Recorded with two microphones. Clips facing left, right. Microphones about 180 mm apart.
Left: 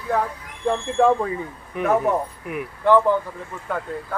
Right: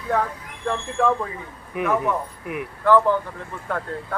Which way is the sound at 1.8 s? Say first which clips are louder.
Left 2 dB; 40° left (ahead or behind).